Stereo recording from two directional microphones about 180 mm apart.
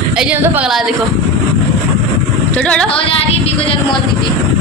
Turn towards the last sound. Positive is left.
turn(degrees=30)  # may be behind; listen again after turning